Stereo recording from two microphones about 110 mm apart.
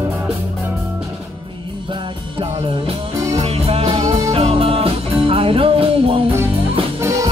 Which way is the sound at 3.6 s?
65° right (ahead or behind).